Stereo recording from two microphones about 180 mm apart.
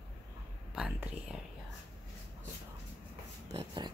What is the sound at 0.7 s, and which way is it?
Speech, 5° right (ahead or behind).